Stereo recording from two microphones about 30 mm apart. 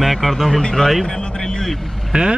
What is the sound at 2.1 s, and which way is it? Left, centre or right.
Speech, right.